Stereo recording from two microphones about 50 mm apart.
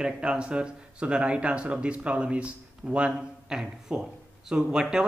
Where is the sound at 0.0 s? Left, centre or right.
Centre.